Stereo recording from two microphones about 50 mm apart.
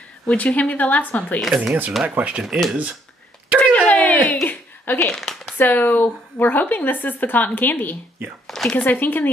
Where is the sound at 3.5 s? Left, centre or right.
Left.